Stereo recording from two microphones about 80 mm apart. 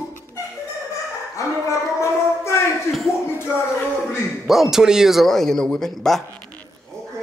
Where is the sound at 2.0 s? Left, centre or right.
Left.